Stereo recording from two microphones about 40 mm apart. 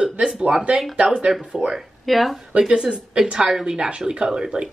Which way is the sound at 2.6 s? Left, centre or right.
Centre.